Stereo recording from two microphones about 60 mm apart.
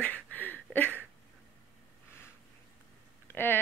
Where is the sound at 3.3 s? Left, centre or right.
Left.